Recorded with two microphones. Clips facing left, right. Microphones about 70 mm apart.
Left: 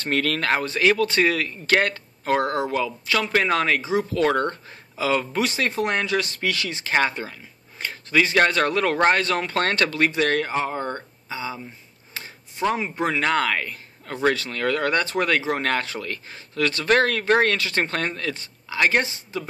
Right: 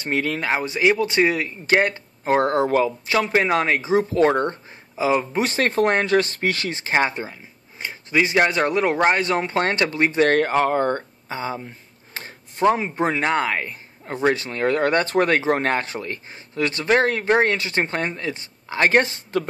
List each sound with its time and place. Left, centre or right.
0.0 s speech: centre; by 2.9 s right
3.1 s speech: right
5.5 s speech: right
10.2 s speech: right
12.1 s a sound: right
12.7 s speech: right
18.7 s speech: right